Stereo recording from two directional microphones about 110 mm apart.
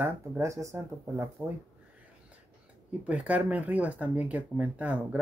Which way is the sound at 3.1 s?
15° right (ahead or behind).